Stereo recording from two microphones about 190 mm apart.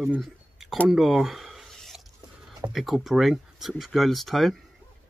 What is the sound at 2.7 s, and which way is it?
Speech, centre (ahead or behind).